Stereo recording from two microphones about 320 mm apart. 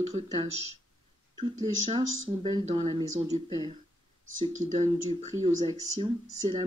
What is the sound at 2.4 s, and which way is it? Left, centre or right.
Speech, centre.